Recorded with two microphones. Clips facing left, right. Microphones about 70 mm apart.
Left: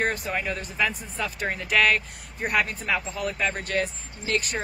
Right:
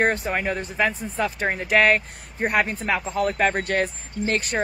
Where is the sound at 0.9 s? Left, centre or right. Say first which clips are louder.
Right 6 dB; right.